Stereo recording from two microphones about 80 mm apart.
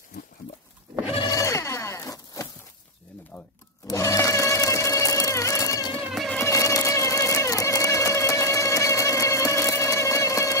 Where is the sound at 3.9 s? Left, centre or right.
Left.